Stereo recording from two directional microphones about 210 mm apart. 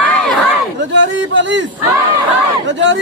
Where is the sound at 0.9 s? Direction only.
60° right (ahead or behind).